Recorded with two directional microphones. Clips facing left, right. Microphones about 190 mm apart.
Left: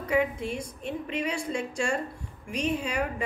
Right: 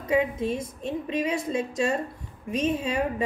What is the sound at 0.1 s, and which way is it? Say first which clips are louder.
A woman's voice: right 3 dB; 20° right (ahead or behind).